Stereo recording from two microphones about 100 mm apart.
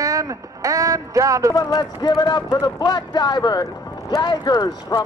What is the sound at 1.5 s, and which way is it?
Speech, 40° left (ahead or behind).